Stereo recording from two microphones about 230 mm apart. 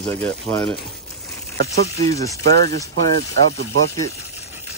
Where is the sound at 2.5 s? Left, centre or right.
Right.